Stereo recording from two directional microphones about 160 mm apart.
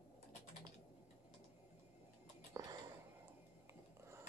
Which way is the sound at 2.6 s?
20° right (ahead or behind).